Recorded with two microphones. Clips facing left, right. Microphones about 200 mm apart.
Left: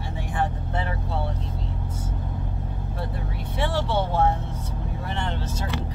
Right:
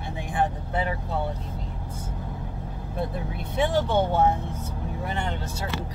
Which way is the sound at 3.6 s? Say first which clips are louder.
Right 2 dB; 15° right (ahead or behind).